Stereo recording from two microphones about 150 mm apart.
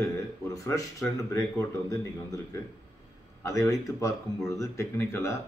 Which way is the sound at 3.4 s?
20° left (ahead or behind).